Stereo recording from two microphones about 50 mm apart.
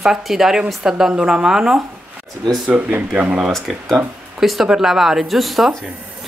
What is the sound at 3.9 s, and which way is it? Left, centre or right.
Speech, centre.